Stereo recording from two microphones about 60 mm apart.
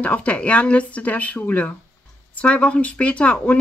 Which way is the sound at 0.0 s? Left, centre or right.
Left.